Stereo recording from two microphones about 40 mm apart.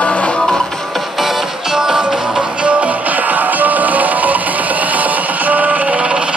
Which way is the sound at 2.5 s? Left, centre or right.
Right.